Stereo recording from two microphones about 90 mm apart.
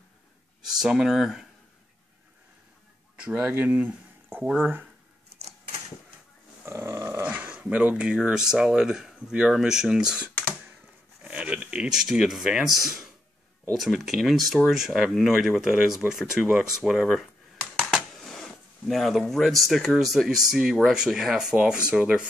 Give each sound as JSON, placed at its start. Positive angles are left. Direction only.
{"t": 0.6, "sound": "speech", "side_deg": -5}
{"t": 3.2, "sound": "speech", "side_deg": -15}
{"t": 6.6, "sound": "a sound", "side_deg": -30}
{"t": 7.2, "sound": "speech", "side_deg": -15}
{"t": 17.9, "sound": "a sound", "side_deg": 0}
{"t": 18.9, "sound": "speech", "side_deg": 0}